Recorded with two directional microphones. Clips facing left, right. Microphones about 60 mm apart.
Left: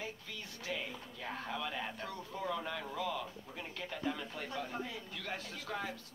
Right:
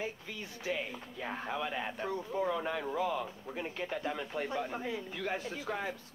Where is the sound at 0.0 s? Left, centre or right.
Right.